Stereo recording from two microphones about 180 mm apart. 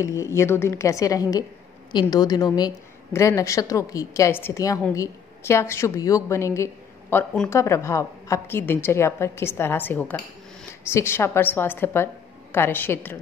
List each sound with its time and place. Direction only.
0.0 s a woman's voice: 15° left (ahead or behind)